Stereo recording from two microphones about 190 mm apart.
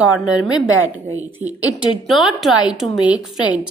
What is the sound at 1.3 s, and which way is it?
A woman's voice, 10° right (ahead or behind).